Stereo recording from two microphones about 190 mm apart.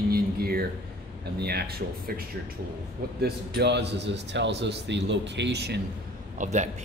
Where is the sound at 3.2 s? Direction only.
60° right (ahead or behind).